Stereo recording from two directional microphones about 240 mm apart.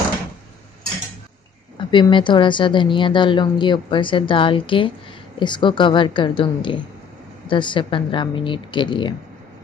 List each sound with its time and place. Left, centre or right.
1.8 s a woman's voice: centre